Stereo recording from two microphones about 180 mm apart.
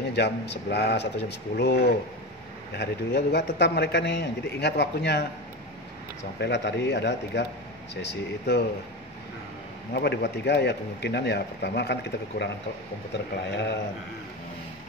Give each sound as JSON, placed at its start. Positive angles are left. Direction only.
{"t": 0.1, "sound": "speech", "side_deg": 70}
{"t": 6.4, "sound": "speech", "side_deg": 70}
{"t": 9.9, "sound": "speech", "side_deg": 65}